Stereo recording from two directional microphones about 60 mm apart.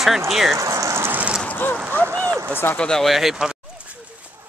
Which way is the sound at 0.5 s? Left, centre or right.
Right.